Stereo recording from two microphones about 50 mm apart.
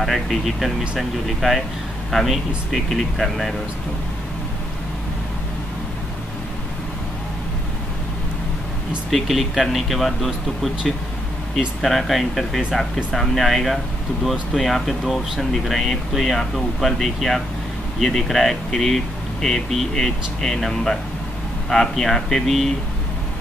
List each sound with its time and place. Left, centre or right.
0.0 s speech: centre
9.1 s speech: centre